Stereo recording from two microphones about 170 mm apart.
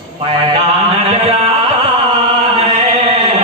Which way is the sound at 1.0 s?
35° right (ahead or behind).